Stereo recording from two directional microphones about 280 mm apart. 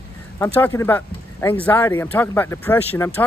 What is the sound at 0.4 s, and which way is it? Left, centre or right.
Speech, centre.